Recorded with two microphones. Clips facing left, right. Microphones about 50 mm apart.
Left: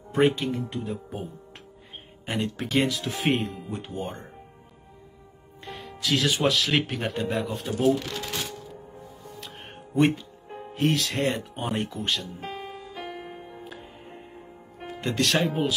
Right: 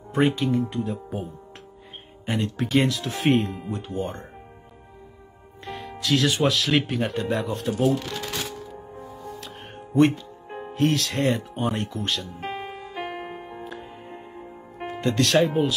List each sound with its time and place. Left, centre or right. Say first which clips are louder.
0.1 s speech: right 1 dB; centre
5.7 s speech: right 3 dB; centre
9.9 s speech: right 3 dB; centre
12.4 s music: right 4 dB; right
15.0 s speech: right 4 dB; centre